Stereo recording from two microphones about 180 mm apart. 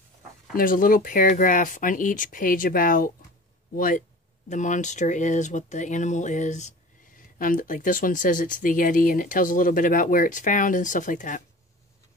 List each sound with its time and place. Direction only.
0.6 s speech: 50° left (ahead or behind)